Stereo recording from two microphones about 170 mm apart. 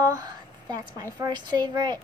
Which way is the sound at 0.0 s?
20° right (ahead or behind).